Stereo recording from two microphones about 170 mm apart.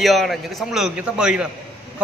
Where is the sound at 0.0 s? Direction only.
Centre (ahead or behind).